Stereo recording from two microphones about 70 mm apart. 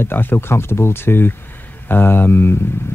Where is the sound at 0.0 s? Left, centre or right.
Left.